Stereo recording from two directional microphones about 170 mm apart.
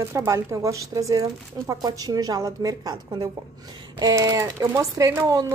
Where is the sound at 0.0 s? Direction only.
15° right (ahead or behind).